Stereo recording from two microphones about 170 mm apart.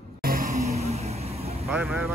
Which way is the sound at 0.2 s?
60° right (ahead or behind).